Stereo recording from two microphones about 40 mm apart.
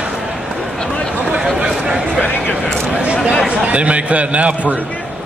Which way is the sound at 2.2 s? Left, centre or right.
Left.